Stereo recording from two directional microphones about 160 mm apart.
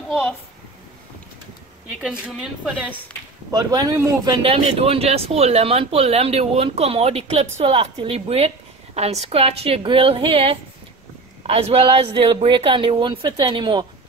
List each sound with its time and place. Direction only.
2.0 s a woman's voice: 5° right (ahead or behind)
3.5 s a man's voice: 25° right (ahead or behind)